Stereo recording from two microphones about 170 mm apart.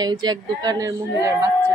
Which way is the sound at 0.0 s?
25° right (ahead or behind).